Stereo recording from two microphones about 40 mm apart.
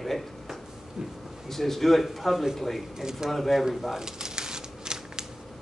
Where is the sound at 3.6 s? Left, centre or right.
Centre.